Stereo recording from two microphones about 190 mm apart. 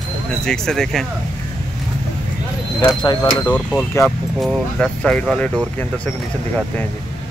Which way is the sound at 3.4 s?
5° left (ahead or behind).